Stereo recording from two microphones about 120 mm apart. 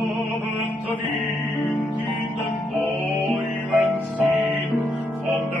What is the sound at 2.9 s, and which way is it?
Music, 15° left (ahead or behind).